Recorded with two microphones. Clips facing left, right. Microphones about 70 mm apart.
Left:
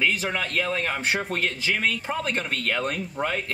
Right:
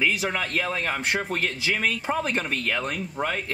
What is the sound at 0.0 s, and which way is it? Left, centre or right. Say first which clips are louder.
Speech: even; centre.